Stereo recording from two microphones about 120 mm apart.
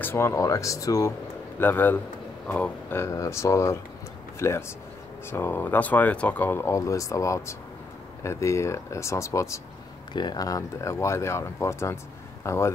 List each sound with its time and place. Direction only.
0.0 s speech: 20° left (ahead or behind)
1.6 s speech: 15° left (ahead or behind)
3.0 s speech: 25° left (ahead or behind)